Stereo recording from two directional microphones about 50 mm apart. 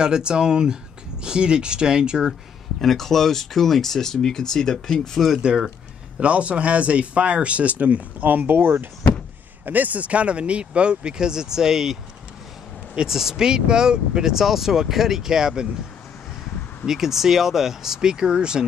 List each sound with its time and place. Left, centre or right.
0.0 s speech: centre
2.8 s speech: centre
5.4 s speech: centre; by 8.8 s right
9.7 s speech: right; by 15.6 s centre
16.8 s speech: centre